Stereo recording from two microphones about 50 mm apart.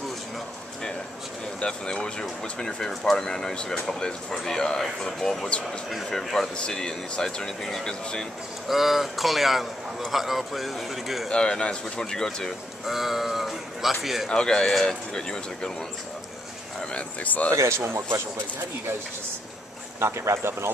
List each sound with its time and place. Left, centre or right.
1.6 s a man's voice: centre
8.6 s a man's voice: centre
11.2 s speech: centre
12.8 s a man's voice: centre
14.3 s speech: centre
16.9 s speech: left
17.5 s speech: right
20.0 s speech: right